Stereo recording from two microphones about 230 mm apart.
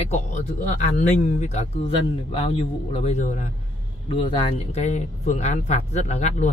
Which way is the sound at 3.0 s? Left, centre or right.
Left.